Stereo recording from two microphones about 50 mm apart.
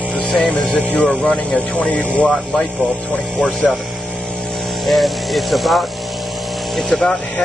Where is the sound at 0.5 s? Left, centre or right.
Left.